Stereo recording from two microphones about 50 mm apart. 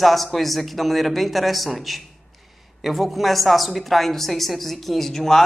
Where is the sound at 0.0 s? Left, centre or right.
Centre.